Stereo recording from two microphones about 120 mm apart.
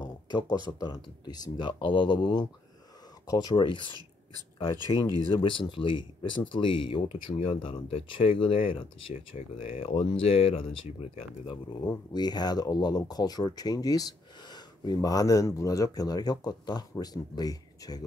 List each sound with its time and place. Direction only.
0.0 s speech: 35° left (ahead or behind)
5.4 s speech: 45° left (ahead or behind)
11.8 s speech: 35° left (ahead or behind)